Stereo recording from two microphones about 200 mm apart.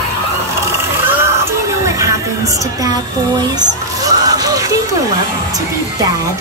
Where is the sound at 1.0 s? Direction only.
10° right (ahead or behind).